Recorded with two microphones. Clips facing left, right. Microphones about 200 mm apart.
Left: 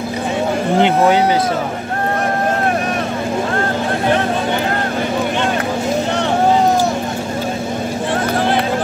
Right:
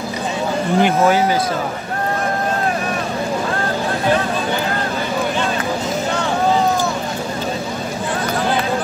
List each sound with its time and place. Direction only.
0.7 s speech: 20° left (ahead or behind)